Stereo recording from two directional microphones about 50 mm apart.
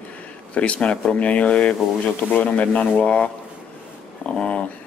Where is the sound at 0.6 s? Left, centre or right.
Left.